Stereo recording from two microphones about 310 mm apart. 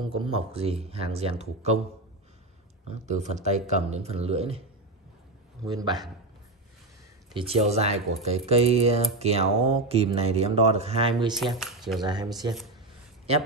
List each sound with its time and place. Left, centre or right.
0.0 s speech: centre
2.9 s speech: right
5.7 s a man's voice: centre
7.3 s speech: centre
11.5 s speech: centre
12.0 s a man's voice: centre